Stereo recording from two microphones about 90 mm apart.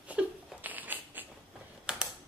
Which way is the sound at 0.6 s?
20° right (ahead or behind).